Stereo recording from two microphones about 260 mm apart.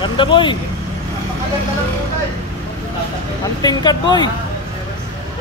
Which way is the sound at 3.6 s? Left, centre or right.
Centre.